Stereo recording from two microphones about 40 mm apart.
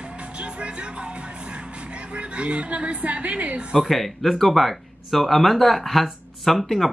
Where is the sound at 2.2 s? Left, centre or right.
Right.